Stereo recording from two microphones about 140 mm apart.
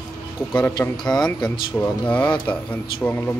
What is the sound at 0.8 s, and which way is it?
Speech, 15° left (ahead or behind).